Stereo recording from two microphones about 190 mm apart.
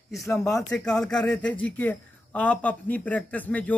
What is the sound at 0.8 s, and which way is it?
Speech, 5° left (ahead or behind).